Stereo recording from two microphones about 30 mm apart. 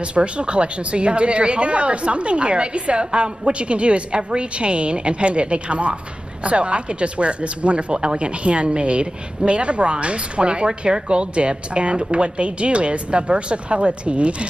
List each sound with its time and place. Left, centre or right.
0.0 s speech: right